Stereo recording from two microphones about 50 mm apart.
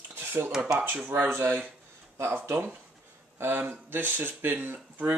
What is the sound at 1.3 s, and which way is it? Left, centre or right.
Speech, right.